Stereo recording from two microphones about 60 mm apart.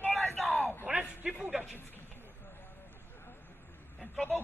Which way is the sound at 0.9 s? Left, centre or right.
Right.